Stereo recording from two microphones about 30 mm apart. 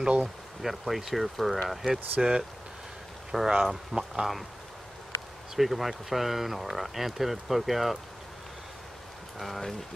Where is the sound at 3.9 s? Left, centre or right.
Right.